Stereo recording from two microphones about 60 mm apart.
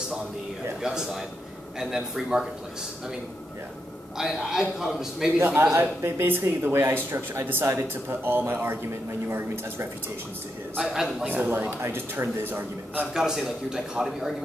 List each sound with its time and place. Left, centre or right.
0.8 s a man's voice: centre
4.2 s a man's voice: centre
5.4 s speech: right
10.8 s a man's voice: centre
11.2 s speech: right
11.8 s speech: right
13.1 s a man's voice: centre